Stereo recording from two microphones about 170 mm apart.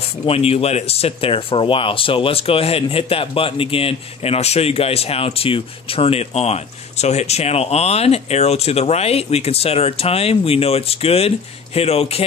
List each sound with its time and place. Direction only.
0.2 s speech: 35° left (ahead or behind)